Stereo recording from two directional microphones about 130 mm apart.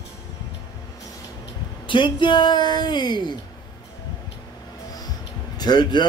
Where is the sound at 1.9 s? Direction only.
35° left (ahead or behind).